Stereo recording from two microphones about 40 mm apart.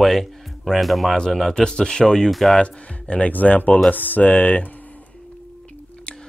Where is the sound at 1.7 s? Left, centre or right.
Left; by 2.6 s centre.